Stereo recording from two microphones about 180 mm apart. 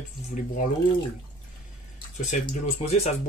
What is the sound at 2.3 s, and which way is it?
Speech, 35° left (ahead or behind).